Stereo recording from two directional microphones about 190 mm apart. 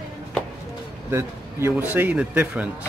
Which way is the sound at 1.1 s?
15° right (ahead or behind).